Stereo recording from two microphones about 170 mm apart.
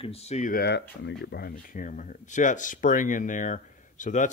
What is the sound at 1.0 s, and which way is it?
Speech, 90° left.